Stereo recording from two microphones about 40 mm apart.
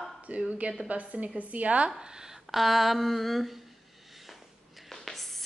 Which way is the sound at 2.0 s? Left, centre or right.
Centre.